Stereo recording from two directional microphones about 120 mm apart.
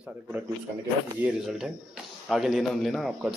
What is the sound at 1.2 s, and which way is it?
A man's voice, 5° right (ahead or behind).